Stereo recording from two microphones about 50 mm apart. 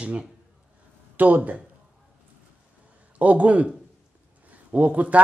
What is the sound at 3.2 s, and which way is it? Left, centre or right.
A man's voice, right.